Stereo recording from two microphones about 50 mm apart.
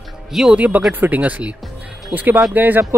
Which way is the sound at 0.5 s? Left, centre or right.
Right.